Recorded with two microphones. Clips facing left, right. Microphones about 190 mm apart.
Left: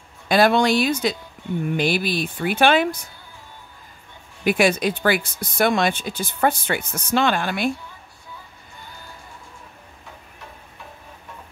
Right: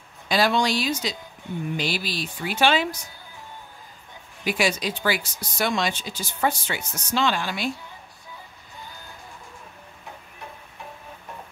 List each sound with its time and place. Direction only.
0.3 s speech: 55° left (ahead or behind)
4.5 s speech: 55° left (ahead or behind)